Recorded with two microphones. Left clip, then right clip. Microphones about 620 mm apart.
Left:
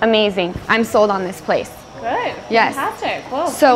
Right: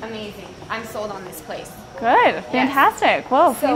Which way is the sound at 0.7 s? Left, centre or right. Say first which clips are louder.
Left 13 dB; left.